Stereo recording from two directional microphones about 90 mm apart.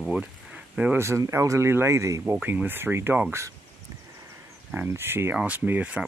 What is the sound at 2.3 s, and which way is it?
Speech, 20° right (ahead or behind).